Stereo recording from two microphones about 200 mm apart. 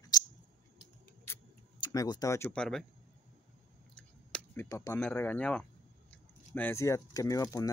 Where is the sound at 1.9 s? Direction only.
20° left (ahead or behind); by 2.9 s 5° left (ahead or behind).